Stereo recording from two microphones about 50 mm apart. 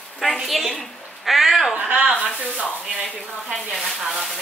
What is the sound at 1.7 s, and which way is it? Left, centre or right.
Speech, right.